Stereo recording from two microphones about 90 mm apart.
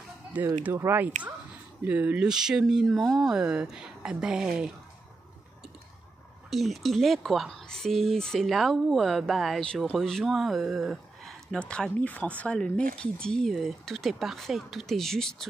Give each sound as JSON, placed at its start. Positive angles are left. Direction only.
{"t": 0.3, "sound": "speech", "side_deg": -15}
{"t": 3.3, "sound": "speech", "side_deg": -10}
{"t": 6.5, "sound": "speech", "side_deg": 0}
{"t": 11.6, "sound": "speech", "side_deg": 10}